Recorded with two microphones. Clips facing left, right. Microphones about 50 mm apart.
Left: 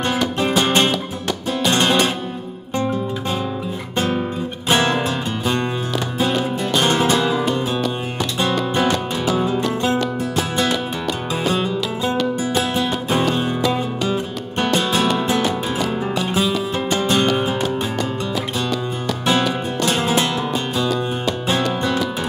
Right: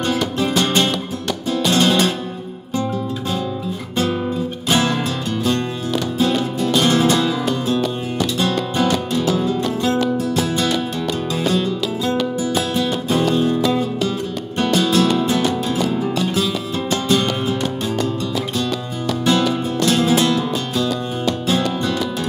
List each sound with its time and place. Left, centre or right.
0.4 s music: centre
6.7 s music: centre
10.1 s music: centre
14.6 s music: centre
19.2 s music: centre